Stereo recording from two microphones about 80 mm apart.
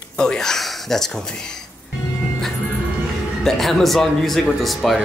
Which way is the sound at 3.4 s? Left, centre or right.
Centre.